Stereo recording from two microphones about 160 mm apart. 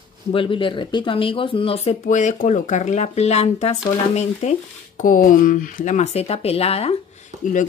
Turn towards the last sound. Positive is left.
turn(degrees=50)  # may be behind; listen again after turning